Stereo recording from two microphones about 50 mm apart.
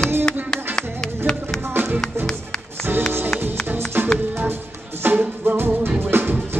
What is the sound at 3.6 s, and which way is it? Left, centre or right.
Music, right.